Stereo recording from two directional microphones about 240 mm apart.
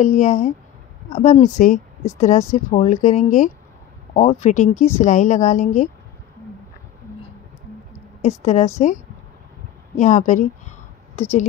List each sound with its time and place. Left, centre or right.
0.0 s a woman's voice: left
8.2 s a woman's voice: left
9.9 s a woman's voice: left